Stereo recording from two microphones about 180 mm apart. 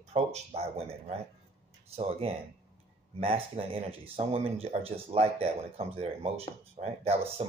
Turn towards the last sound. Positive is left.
turn(degrees=-35)  # may be behind; listen again after turning